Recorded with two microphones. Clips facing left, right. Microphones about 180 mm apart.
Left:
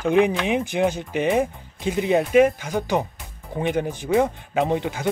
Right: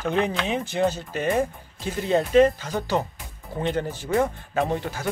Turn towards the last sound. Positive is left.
turn(degrees=15)  # may be behind; listen again after turning